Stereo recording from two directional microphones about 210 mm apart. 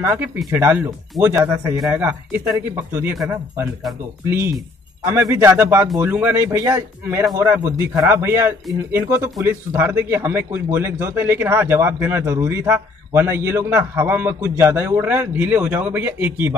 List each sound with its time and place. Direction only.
0.5 s a man's voice: 10° right (ahead or behind)
4.3 s a man's voice: 10° right (ahead or behind)